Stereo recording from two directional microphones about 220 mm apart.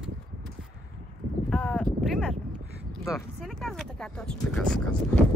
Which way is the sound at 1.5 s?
5° left (ahead or behind).